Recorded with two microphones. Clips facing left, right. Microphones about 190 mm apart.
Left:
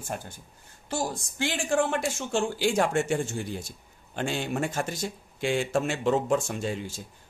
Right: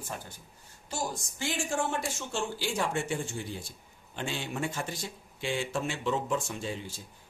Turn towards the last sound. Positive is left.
turn(degrees=45)  # may be behind; listen again after turning